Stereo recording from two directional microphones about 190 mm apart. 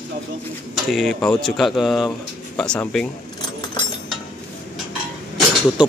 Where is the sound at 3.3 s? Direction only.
25° left (ahead or behind).